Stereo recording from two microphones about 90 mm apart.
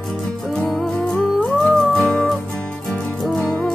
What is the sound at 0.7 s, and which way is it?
Music, 5° left (ahead or behind).